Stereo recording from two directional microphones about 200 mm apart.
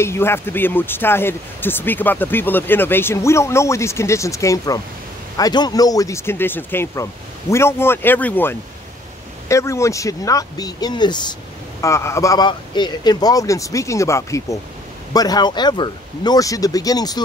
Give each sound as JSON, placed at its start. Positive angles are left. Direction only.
{"t": 0.0, "sound": "speech", "side_deg": 10}